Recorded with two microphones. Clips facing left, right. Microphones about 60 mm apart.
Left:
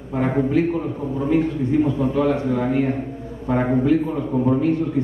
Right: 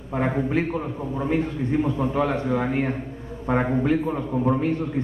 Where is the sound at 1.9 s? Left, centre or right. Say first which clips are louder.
Left 4 dB; centre.